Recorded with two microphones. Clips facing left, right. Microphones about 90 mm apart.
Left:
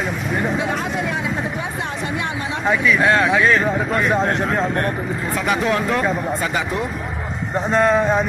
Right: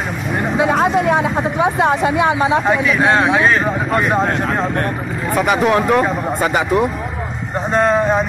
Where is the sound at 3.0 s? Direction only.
20° right (ahead or behind).